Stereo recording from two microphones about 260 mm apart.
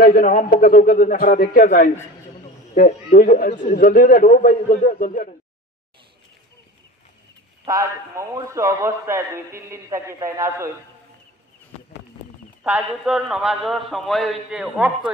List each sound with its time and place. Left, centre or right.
0.0 s a man's voice: left
7.6 s a man's voice: centre
12.6 s a man's voice: centre